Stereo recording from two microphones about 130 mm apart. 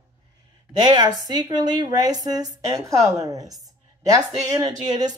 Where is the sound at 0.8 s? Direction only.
35° right (ahead or behind).